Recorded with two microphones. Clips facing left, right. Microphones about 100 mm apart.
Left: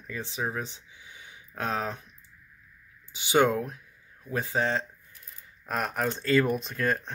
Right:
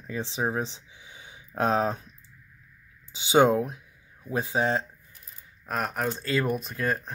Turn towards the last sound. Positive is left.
turn(degrees=0)  # may be behind; listen again after turning